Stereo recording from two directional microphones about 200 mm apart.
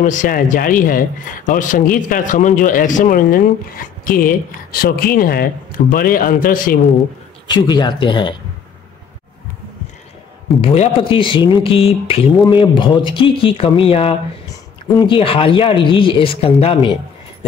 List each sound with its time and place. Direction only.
0.0 s speech: 40° left (ahead or behind)
7.5 s speech: 20° left (ahead or behind)
10.7 s speech: 30° left (ahead or behind)